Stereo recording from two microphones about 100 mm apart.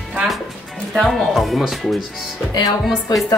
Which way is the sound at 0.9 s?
Centre (ahead or behind).